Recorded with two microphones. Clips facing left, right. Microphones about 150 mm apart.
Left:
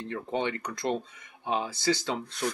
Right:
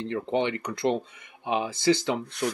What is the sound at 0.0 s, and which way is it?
Speech, 20° right (ahead or behind).